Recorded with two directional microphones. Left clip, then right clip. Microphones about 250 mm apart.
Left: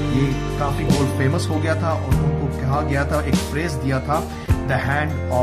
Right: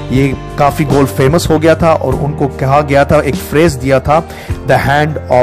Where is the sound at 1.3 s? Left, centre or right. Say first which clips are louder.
Right 14 dB; right.